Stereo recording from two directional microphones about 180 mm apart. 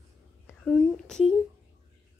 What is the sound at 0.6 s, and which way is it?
Speech, centre (ahead or behind).